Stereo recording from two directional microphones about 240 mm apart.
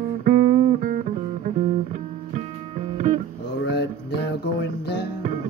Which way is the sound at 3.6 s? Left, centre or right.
Left.